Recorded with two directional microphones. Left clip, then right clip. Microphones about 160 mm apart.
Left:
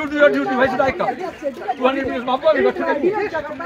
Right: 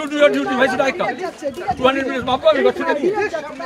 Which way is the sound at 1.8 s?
5° right (ahead or behind).